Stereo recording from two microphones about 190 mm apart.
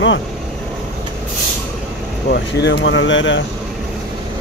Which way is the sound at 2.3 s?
65° left (ahead or behind).